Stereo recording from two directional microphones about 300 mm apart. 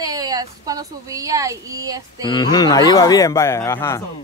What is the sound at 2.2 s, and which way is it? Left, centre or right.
Speech, centre.